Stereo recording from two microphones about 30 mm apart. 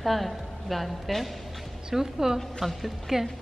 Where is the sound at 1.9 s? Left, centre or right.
Centre.